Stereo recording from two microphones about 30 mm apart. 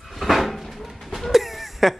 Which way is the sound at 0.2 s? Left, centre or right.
Centre.